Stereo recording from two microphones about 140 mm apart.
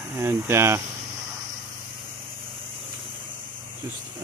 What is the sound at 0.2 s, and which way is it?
Speech, 20° right (ahead or behind).